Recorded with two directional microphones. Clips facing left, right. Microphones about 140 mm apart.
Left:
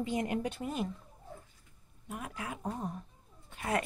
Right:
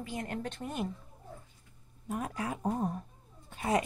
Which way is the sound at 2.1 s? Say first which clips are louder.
Right 5 dB; 40° right (ahead or behind).